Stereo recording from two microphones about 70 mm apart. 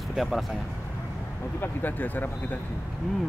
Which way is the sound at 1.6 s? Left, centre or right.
Left.